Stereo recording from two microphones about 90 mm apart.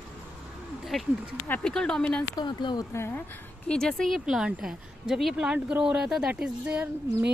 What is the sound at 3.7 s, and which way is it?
A woman's voice, 5° left (ahead or behind).